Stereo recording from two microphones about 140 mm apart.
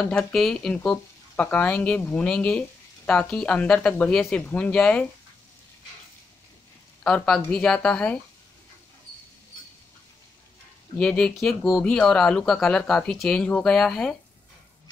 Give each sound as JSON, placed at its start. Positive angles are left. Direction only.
{"t": 0.1, "sound": "speech", "side_deg": 5}
{"t": 7.0, "sound": "speech", "side_deg": 10}
{"t": 11.0, "sound": "speech", "side_deg": 5}